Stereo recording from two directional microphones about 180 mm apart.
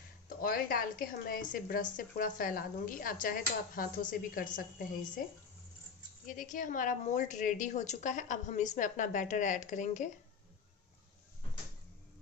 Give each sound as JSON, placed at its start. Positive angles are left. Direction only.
{"t": 0.3, "sound": "a woman's voice", "side_deg": 50}
{"t": 6.2, "sound": "a woman's voice", "side_deg": 45}